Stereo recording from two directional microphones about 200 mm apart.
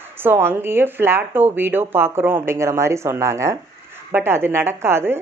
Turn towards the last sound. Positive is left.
turn(degrees=-10)  # may be behind; listen again after turning